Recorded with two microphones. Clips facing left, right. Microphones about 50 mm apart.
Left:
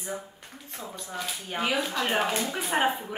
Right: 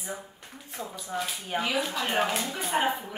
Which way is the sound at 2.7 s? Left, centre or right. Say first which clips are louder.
Left 1 dB; centre.